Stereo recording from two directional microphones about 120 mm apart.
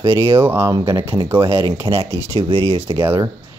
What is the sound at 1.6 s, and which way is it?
Speech, 45° right (ahead or behind).